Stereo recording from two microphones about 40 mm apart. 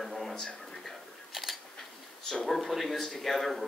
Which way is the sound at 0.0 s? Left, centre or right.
Centre.